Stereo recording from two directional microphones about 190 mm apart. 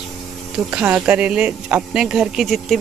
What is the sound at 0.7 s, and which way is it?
Speech, 5° right (ahead or behind).